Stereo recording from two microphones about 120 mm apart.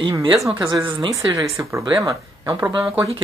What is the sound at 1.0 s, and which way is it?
Speech, 30° right (ahead or behind).